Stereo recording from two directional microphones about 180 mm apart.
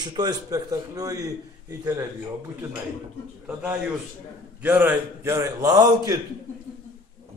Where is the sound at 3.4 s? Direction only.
10° right (ahead or behind).